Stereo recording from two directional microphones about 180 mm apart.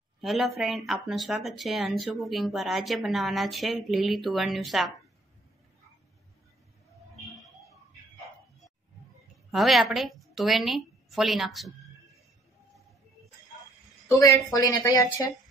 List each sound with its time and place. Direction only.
0.2 s speech: centre (ahead or behind)
9.5 s a woman's voice: centre (ahead or behind)
14.0 s speech: 15° left (ahead or behind)